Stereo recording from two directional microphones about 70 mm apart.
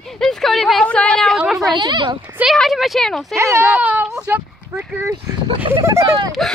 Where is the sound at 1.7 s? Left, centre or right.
Right.